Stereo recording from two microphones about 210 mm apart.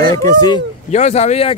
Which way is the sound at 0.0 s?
15° left (ahead or behind).